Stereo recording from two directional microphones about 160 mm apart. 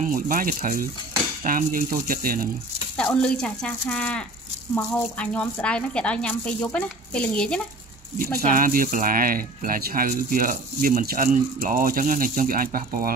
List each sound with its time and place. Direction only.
0.0 s speech: 60° right (ahead or behind)
3.0 s speech: 5° left (ahead or behind)
8.2 s speech: 60° right (ahead or behind)